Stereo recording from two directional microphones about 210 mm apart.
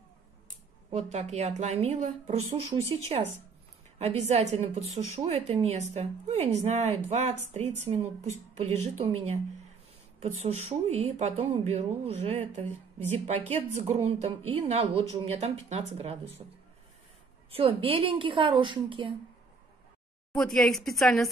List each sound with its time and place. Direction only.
0.8 s a woman's voice: 30° right (ahead or behind)
13.5 s a woman's voice: 30° right (ahead or behind)
17.5 s a woman's voice: 25° right (ahead or behind)
20.3 s speech: centre (ahead or behind)